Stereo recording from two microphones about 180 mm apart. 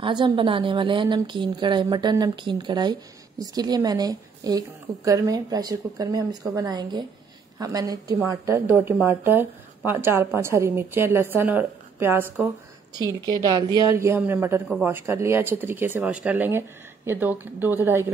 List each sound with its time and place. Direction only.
0.0 s a woman's voice: 25° right (ahead or behind); by 18.0 s 10° right (ahead or behind)